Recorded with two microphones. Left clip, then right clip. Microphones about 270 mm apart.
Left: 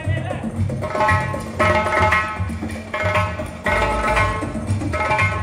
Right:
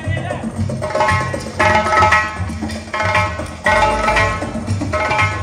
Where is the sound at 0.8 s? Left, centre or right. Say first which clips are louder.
Right 2 dB; right.